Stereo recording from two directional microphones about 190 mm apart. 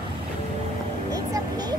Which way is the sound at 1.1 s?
20° right (ahead or behind).